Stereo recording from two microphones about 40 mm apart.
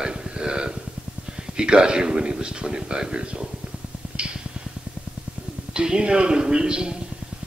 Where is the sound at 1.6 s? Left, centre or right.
Right.